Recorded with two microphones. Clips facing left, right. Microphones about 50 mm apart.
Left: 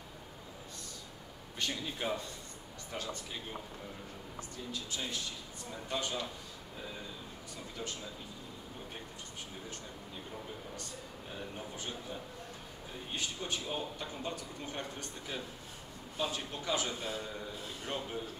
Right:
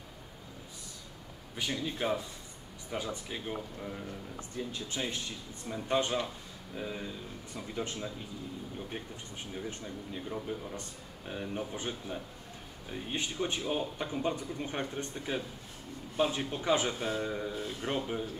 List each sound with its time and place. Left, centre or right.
1.6 s speech: centre
4.6 s speech: right
7.7 s speech: right
11.3 s speech: right